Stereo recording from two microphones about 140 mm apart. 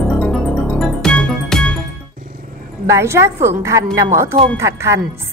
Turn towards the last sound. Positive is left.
turn(degrees=-20)  # may be behind; listen again after turning